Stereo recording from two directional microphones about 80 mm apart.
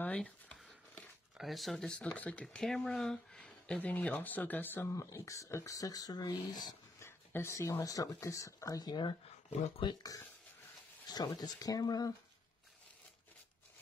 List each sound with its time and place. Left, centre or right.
0.0 s a sound: centre
1.4 s speech: centre
2.1 s speech: centre
2.4 s speech: centre; by 4.8 s left
4.9 s speech: left
7.0 s speech: left
9.8 s speech: left
11.1 s speech: left